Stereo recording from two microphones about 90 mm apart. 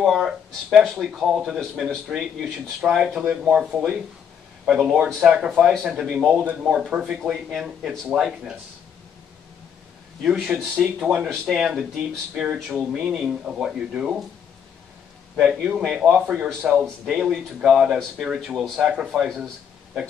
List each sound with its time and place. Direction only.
0.0 s speech: centre (ahead or behind)
10.2 s speech: 5° right (ahead or behind)
15.3 s speech: 5° right (ahead or behind)